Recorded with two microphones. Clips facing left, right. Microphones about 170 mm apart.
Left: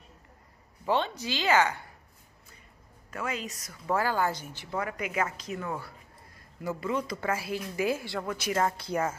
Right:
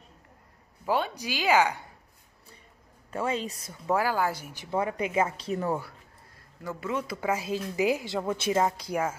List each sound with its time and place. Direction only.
0.8 s speech: 10° right (ahead or behind)
3.1 s speech: 30° right (ahead or behind)
3.9 s speech: 10° right (ahead or behind)
4.6 s speech: 25° right (ahead or behind)
6.8 s speech: 5° right (ahead or behind)